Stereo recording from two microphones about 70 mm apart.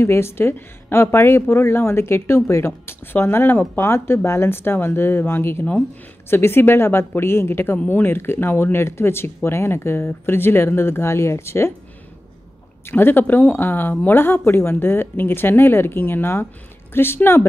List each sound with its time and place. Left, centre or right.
0.0 s speech: left
12.9 s speech: left